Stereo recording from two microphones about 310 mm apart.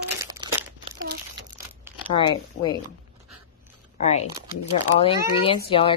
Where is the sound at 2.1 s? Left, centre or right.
Centre.